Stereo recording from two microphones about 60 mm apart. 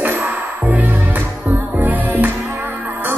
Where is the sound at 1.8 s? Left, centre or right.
Right.